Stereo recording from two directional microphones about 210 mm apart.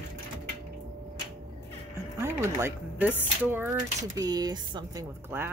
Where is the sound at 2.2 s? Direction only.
10° right (ahead or behind).